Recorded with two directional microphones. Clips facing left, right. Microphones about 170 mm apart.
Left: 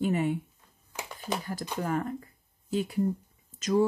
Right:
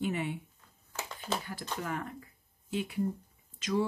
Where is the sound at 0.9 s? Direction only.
10° left (ahead or behind).